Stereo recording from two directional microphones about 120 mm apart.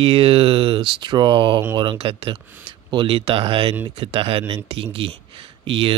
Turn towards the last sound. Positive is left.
turn(degrees=-45)  # may be behind; listen again after turning